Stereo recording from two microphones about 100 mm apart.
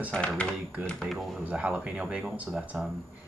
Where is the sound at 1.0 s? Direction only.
Centre (ahead or behind).